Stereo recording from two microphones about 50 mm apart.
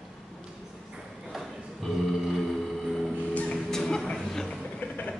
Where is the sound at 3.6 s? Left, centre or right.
Centre.